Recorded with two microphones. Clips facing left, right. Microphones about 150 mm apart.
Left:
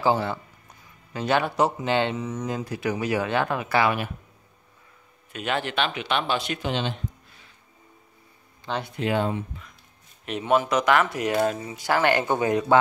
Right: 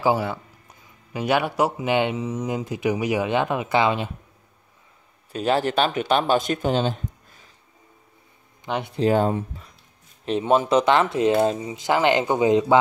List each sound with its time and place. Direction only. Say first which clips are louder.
0.0 s speech: right 1 dB; 10° right (ahead or behind)
5.3 s speech: right 6 dB; 35° right (ahead or behind)
8.6 s speech: right 3 dB; 15° right (ahead or behind)
8.9 s speech: right 6 dB; 40° right (ahead or behind)
10.2 s speech: right 3 dB; 30° right (ahead or behind)